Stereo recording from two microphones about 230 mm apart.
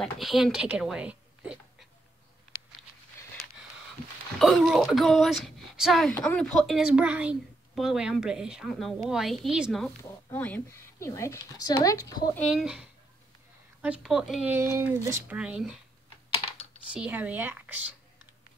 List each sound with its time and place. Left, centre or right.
0.0 s a woman's voice: centre
3.2 s a sound: centre
4.4 s speech: centre
12.4 s speech: centre
16.9 s speech: centre